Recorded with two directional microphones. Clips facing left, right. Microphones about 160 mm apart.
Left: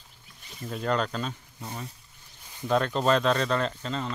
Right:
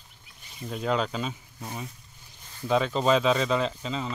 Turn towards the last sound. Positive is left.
turn(degrees=0)  # may be behind; listen again after turning